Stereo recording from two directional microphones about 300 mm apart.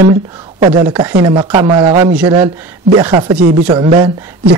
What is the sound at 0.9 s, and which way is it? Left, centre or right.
Speech, centre.